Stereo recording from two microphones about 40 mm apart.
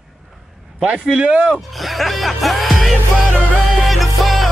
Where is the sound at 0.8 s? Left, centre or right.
Right.